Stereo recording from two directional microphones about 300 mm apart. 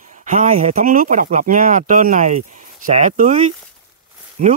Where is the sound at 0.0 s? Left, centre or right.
Right.